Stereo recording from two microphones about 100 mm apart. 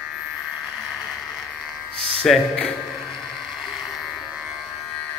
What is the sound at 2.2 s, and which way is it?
Speech, 5° left (ahead or behind).